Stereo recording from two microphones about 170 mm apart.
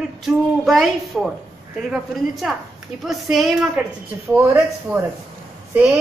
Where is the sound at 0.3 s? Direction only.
Centre (ahead or behind).